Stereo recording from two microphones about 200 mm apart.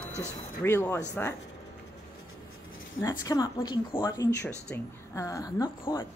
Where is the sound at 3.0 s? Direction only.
15° left (ahead or behind).